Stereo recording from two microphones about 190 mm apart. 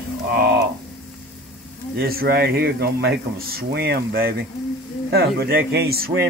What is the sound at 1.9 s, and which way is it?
Speech, 50° right (ahead or behind).